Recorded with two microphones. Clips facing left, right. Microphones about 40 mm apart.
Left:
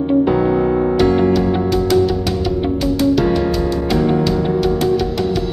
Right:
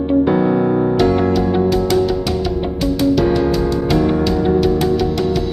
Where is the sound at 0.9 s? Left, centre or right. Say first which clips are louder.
Left 1 dB; centre.